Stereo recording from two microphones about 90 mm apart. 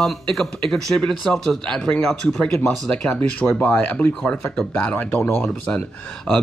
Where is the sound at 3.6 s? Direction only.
20° left (ahead or behind).